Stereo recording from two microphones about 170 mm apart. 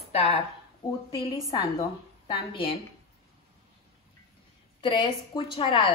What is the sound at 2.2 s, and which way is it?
Speech, 30° left (ahead or behind).